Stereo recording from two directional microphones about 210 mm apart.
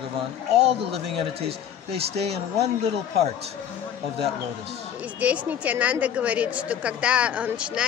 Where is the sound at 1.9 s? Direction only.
30° right (ahead or behind).